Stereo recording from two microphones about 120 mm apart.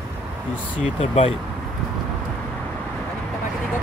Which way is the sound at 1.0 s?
65° left (ahead or behind).